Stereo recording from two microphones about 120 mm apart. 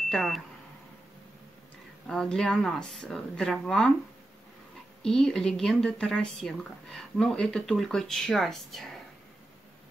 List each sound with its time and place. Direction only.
0.1 s speech: centre (ahead or behind)
2.0 s speech: 5° left (ahead or behind)
5.0 s speech: 5° left (ahead or behind)